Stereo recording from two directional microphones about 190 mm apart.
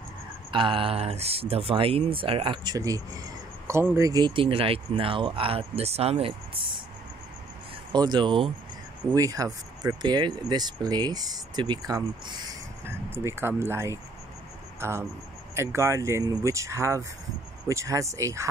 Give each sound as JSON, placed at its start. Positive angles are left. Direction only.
{"t": 0.5, "sound": "speech", "side_deg": -25}
{"t": 7.9, "sound": "speech", "side_deg": -20}
{"t": 12.8, "sound": "speech", "side_deg": -15}